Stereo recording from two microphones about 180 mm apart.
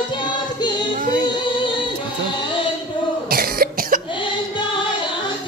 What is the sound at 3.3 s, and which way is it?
Cough, 55° right (ahead or behind).